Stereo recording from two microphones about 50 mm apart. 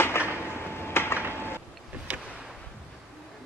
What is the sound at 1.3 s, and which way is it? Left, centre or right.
Vehicle, left.